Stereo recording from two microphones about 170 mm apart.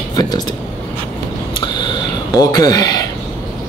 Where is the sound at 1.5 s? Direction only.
25° left (ahead or behind).